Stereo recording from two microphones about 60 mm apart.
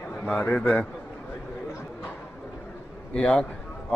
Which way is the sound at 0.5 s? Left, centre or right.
Left.